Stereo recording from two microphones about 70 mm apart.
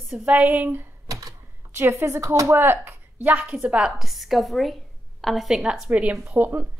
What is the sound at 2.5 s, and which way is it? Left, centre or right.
Speech, right.